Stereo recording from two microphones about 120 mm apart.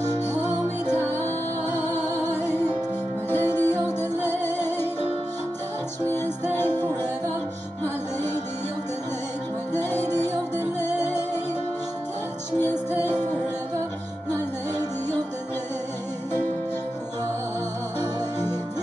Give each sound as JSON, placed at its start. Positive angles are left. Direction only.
{"t": 0.8, "sound": "music", "side_deg": 15}
{"t": 6.4, "sound": "music", "side_deg": 20}
{"t": 9.8, "sound": "music", "side_deg": 20}